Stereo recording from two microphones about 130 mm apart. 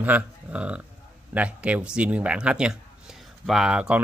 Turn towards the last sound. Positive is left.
turn(degrees=-5)  # may be behind; listen again after turning